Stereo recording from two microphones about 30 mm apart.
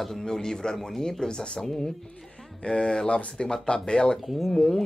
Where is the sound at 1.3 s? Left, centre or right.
Left.